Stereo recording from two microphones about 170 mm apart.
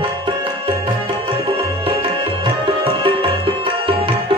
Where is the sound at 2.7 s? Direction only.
30° right (ahead or behind).